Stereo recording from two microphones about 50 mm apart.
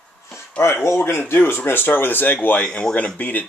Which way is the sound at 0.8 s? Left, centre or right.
Left.